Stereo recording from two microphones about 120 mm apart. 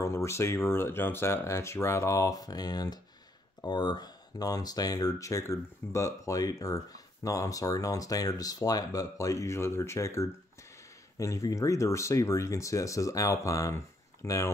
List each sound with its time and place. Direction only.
0.0 s speech: 25° left (ahead or behind)